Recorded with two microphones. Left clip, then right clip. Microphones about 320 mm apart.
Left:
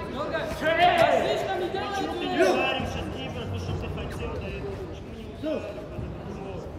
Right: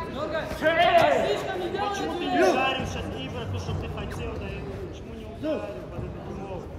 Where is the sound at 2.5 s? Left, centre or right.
Centre.